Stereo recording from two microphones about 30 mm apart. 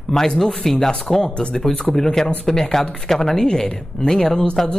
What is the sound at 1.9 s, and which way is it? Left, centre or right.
Speech, centre.